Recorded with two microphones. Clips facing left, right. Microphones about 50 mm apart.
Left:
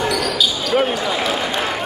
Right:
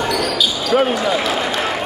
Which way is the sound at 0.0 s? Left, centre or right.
Centre.